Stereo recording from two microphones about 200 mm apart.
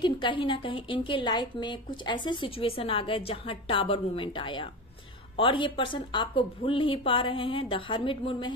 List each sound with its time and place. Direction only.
0.0 s a woman's voice: 25° left (ahead or behind)